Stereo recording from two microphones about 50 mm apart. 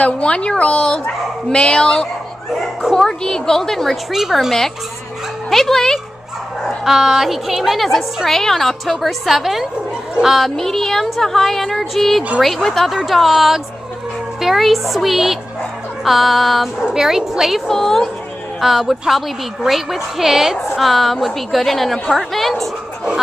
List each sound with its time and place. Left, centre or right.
0.0 s a woman's voice: left; by 4.0 s centre
4.1 s a woman's voice: centre
6.8 s a woman's voice: centre
16.8 s a woman's voice: centre
17.6 s a woman's voice: centre
18.6 s a woman's voice: centre